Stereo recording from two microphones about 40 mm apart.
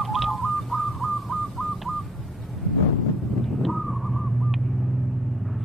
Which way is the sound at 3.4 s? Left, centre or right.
Centre.